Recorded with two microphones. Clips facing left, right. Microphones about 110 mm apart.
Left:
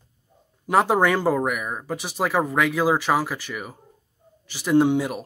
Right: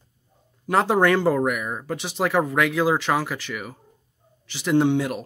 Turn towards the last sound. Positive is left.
turn(degrees=10)  # may be behind; listen again after turning